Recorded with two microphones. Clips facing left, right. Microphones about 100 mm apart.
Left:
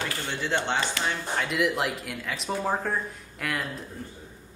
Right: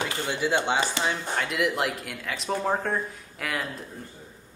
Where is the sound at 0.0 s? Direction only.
20° right (ahead or behind).